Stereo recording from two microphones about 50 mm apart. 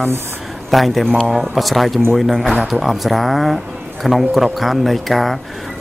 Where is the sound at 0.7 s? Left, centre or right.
Centre.